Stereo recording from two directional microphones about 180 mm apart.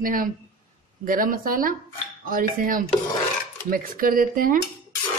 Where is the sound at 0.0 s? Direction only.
50° right (ahead or behind).